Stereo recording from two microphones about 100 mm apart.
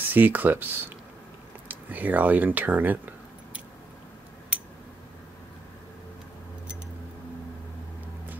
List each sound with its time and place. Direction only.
0.0 s speech: 20° right (ahead or behind)